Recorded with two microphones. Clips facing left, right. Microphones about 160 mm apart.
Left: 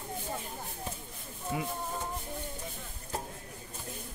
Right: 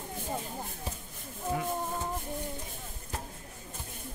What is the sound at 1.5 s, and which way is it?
Music, 10° left (ahead or behind).